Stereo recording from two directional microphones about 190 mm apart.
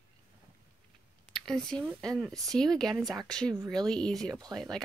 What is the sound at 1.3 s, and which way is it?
Speech, centre (ahead or behind).